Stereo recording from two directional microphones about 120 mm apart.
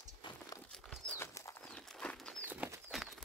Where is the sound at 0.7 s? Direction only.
Centre (ahead or behind).